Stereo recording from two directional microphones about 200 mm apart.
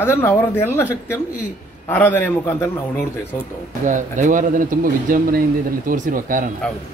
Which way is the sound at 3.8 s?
40° right (ahead or behind).